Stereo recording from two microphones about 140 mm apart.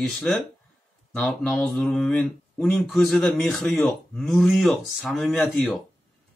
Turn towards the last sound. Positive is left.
turn(degrees=0)  # may be behind; listen again after turning